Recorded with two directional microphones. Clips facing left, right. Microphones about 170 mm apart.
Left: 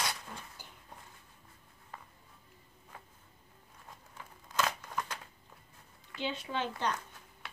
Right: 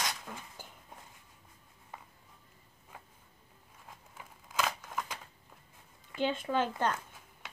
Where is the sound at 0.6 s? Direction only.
45° right (ahead or behind).